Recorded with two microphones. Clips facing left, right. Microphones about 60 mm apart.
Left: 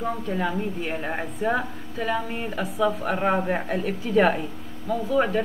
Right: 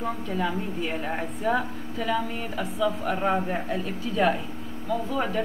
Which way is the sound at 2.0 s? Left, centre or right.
Left.